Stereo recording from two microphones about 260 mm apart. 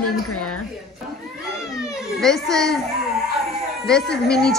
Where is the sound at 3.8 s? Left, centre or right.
Centre.